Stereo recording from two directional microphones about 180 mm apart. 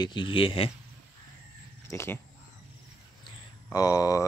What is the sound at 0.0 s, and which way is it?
Speech, 25° left (ahead or behind).